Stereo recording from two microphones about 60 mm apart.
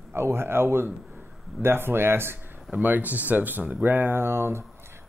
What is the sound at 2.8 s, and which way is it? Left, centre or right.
Speech, right.